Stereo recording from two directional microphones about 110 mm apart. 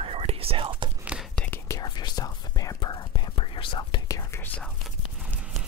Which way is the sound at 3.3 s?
50° left (ahead or behind).